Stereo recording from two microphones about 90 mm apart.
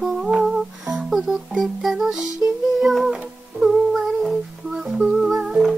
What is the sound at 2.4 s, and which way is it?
Music, 20° right (ahead or behind).